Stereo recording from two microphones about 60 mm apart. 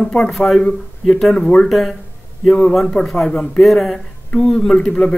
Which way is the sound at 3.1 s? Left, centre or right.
Centre.